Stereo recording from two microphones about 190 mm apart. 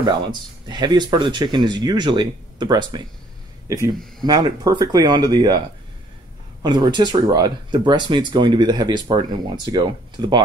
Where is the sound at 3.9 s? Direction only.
Centre (ahead or behind).